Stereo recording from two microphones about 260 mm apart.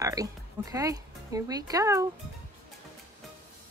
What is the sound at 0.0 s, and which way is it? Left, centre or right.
Speech, centre.